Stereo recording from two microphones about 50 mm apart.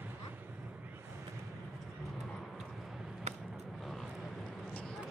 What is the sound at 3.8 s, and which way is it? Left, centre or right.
Vehicle, centre.